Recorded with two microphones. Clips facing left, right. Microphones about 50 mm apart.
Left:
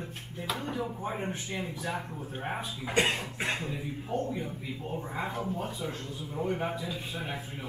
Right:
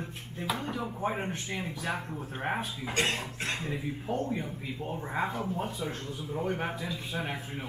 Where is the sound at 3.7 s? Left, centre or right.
Right.